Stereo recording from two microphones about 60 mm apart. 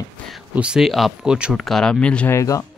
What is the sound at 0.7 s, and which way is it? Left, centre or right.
Speech, centre.